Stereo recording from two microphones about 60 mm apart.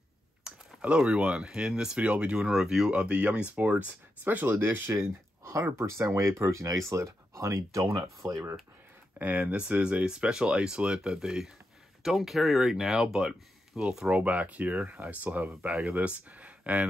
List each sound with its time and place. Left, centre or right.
0.4 s speech: centre; by 4.5 s right
4.5 s speech: right
9.2 s speech: right
14.1 s speech: right